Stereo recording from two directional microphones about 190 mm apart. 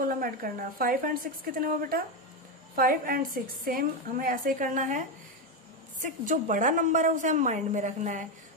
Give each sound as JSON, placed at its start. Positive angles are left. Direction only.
{"t": 0.0, "sound": "a woman's voice", "side_deg": -45}